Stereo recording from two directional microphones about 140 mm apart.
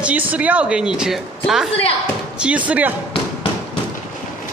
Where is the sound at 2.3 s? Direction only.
10° right (ahead or behind).